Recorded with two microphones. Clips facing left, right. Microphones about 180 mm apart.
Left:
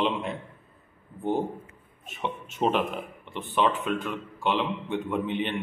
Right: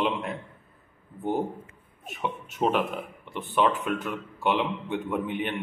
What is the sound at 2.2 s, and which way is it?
A man's voice, 10° right (ahead or behind).